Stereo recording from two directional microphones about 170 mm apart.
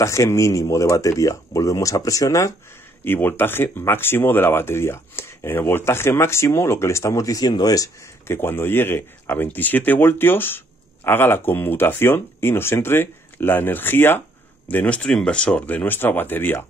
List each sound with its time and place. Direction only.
0.0 s speech: 15° left (ahead or behind)